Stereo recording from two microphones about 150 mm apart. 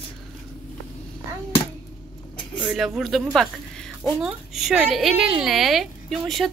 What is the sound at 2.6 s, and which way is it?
A woman's voice, 5° right (ahead or behind).